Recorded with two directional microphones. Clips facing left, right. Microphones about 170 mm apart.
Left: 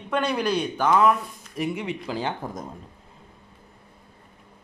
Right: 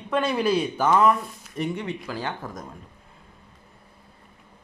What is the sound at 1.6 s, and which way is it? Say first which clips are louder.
Speech: left 1 dB; 10° left (ahead or behind).